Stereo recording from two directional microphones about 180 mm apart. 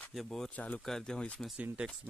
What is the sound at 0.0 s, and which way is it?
Speech, centre (ahead or behind).